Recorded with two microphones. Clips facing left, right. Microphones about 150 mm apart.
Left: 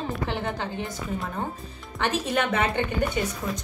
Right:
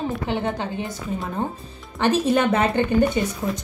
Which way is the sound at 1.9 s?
35° right (ahead or behind).